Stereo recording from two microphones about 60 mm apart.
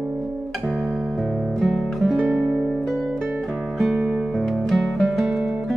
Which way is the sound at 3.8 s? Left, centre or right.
Centre.